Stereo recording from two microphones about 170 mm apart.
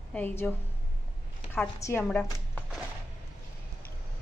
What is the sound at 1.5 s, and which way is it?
A woman's voice, 10° left (ahead or behind).